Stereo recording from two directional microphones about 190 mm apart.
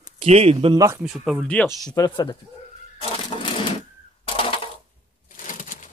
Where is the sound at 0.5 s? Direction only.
20° right (ahead or behind).